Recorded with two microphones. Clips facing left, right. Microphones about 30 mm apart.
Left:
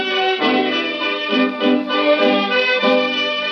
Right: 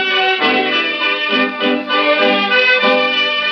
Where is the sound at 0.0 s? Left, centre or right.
Centre.